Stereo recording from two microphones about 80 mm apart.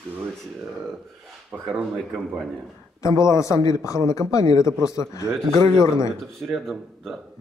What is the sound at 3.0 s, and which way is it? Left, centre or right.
A man's voice, left.